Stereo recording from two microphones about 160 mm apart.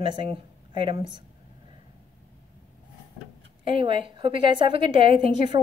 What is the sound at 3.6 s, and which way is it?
A woman's voice, 35° right (ahead or behind).